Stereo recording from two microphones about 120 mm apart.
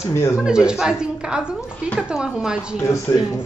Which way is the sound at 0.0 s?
25° left (ahead or behind).